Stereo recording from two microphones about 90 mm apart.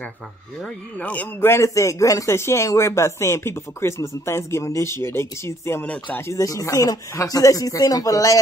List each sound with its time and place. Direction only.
0.9 s a man's voice: 15° left (ahead or behind)
6.3 s a man's voice: 35° left (ahead or behind)